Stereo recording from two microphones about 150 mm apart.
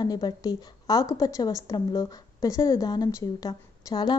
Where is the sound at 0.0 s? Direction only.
25° left (ahead or behind).